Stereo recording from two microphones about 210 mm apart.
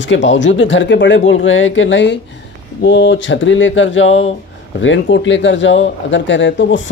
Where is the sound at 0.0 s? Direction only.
60° left (ahead or behind).